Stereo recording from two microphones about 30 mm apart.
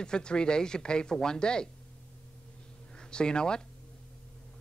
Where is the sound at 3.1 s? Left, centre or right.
Left.